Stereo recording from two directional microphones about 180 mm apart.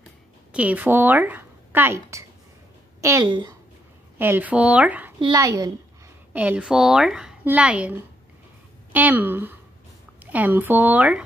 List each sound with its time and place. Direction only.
0.5 s a woman's voice: 10° right (ahead or behind); by 3.5 s 25° right (ahead or behind)
4.2 s speech: 10° right (ahead or behind)
5.2 s a woman's voice: 20° right (ahead or behind)
6.3 s speech: 10° right (ahead or behind)
8.9 s speech: 10° right (ahead or behind)